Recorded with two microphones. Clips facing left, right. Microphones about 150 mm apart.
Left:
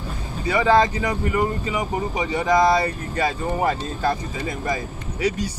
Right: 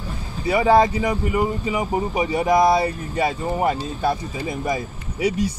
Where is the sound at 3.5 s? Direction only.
10° right (ahead or behind).